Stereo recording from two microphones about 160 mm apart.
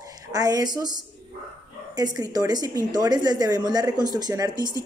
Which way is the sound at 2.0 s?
25° right (ahead or behind).